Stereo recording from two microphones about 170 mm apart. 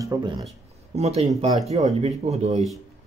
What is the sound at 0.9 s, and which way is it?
Speech, 40° right (ahead or behind).